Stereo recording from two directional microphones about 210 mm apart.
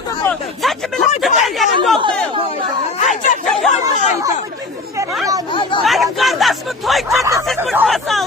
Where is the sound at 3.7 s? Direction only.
35° left (ahead or behind).